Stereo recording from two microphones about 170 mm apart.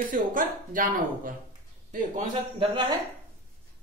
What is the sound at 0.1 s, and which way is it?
A woman's voice, 50° right (ahead or behind).